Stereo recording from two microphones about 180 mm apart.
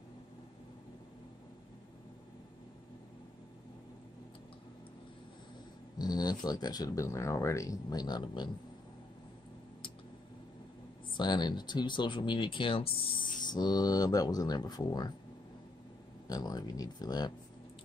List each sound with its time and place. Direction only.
5.9 s speech: 20° left (ahead or behind)
11.1 s speech: 25° left (ahead or behind)
16.3 s speech: 20° left (ahead or behind)